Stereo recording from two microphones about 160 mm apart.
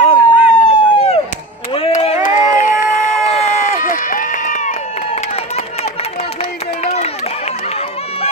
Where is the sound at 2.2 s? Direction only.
55° left (ahead or behind).